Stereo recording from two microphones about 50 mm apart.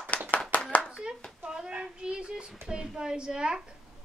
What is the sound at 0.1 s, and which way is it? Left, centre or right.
Clapping, left.